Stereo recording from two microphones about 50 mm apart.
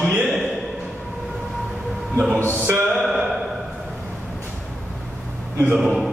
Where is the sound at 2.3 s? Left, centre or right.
Left.